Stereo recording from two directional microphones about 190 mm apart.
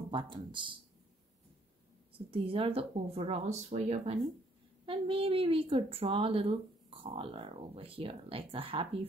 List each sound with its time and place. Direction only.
0.1 s a woman's voice: 25° right (ahead or behind)
2.1 s a woman's voice: 30° right (ahead or behind)